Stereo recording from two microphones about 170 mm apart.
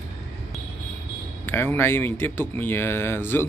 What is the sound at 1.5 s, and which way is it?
Speech, 10° left (ahead or behind).